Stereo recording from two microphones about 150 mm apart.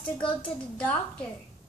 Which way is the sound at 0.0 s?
35° left (ahead or behind).